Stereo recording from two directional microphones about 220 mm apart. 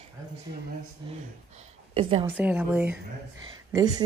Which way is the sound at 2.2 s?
5° right (ahead or behind).